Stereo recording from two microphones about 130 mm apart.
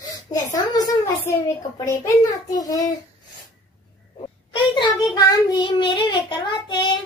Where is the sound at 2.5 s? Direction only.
30° left (ahead or behind).